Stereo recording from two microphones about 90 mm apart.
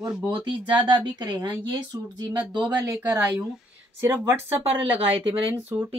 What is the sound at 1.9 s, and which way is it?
Speech, 35° right (ahead or behind).